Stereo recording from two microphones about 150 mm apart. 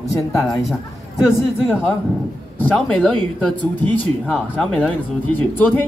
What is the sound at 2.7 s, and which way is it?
Speech, 5° left (ahead or behind).